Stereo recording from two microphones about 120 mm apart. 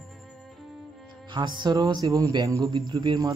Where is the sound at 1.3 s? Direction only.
40° right (ahead or behind).